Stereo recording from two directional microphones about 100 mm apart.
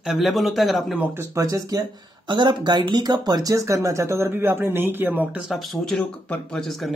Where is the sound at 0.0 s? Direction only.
5° right (ahead or behind).